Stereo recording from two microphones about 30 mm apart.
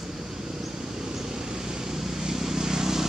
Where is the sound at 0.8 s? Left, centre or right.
Centre.